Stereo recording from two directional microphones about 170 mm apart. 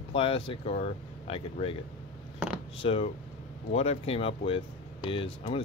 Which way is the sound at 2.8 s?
35° left (ahead or behind).